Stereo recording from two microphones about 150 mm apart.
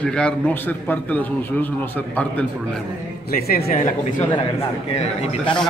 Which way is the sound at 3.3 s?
90° left.